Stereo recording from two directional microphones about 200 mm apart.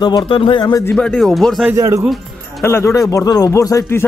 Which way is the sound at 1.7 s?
15° right (ahead or behind).